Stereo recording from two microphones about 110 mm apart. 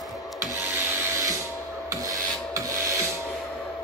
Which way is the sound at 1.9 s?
30° right (ahead or behind).